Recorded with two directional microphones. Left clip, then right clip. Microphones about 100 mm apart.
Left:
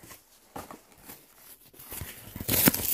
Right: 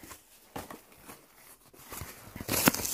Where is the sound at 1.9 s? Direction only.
65° left (ahead or behind).